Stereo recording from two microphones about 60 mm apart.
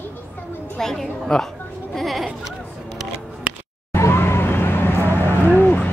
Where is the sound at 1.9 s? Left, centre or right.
Centre.